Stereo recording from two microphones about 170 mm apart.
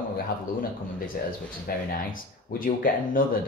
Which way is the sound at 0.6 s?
55° left (ahead or behind).